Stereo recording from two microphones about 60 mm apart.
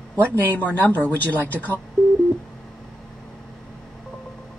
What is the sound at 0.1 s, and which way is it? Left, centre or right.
A woman's voice, left.